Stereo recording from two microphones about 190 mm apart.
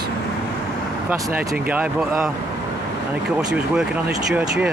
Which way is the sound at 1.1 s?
15° right (ahead or behind).